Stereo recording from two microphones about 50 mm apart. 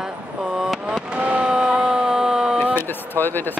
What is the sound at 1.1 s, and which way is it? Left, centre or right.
Fireworks, right.